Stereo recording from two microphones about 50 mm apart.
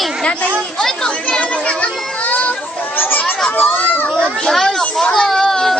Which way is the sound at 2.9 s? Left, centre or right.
Left.